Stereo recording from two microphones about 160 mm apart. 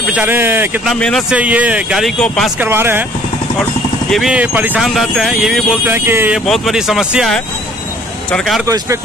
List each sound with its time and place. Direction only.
0.1 s speech: 10° right (ahead or behind)
0.8 s speech: 5° left (ahead or behind)
1.3 s speech: 10° right (ahead or behind)
2.6 s speech: 15° right (ahead or behind)
4.1 s speech: 5° right (ahead or behind)
5.9 s speech: 15° right (ahead or behind)
6.4 s speech: centre (ahead or behind)
8.6 s speech: 20° right (ahead or behind)